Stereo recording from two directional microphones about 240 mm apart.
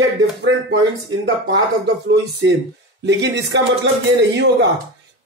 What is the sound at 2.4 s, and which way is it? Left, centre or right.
Speech, right.